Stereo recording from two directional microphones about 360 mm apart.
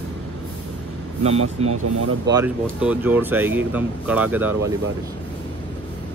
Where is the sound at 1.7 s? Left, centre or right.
Right.